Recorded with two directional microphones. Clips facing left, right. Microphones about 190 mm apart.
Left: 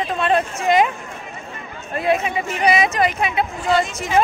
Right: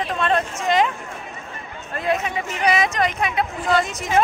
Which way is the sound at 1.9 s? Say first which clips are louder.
Left 3 dB; 10° left (ahead or behind).